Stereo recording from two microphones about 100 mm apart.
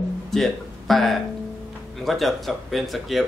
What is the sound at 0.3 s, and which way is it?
Speech, centre (ahead or behind).